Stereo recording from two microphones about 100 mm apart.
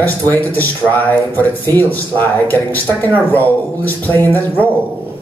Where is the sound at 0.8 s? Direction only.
10° right (ahead or behind).